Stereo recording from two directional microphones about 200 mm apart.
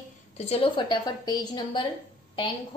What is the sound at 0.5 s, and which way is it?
A woman's voice, 25° left (ahead or behind).